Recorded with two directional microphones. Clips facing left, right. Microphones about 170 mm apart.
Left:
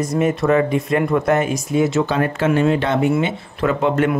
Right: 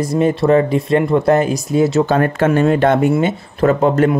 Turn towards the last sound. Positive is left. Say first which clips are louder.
# right 4 dB
turn(degrees=-40)  # may be behind; listen again after turning